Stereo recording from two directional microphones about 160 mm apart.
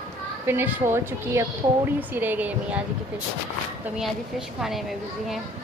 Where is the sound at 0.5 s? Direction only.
10° right (ahead or behind).